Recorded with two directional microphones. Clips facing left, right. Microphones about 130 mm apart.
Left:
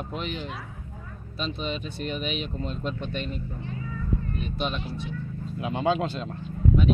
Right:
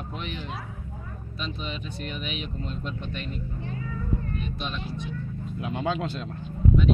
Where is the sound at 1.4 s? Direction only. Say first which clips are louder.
Left 4 dB; 30° left (ahead or behind).